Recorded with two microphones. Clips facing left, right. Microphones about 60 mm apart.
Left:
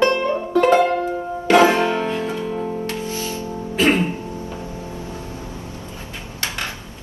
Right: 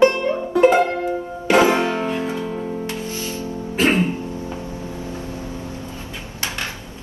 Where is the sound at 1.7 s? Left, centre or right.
Right.